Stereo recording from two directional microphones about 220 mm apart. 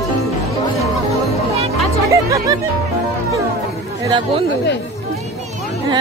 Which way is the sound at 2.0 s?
15° right (ahead or behind).